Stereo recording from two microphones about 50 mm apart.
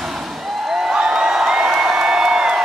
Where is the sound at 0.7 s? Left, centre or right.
Centre.